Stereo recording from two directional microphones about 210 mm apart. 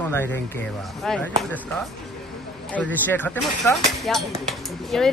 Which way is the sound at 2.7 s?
10° left (ahead or behind).